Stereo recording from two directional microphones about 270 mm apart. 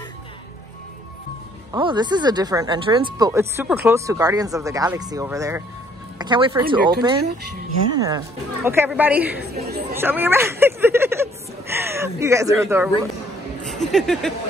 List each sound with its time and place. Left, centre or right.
1.7 s speech: centre
9.7 s speech: right
9.9 s speech: centre
13.9 s speech: centre